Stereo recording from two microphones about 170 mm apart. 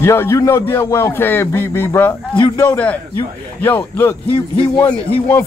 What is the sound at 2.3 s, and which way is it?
Speech, 25° left (ahead or behind).